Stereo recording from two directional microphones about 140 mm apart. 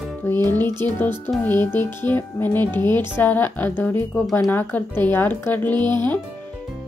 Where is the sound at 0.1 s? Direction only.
15° left (ahead or behind).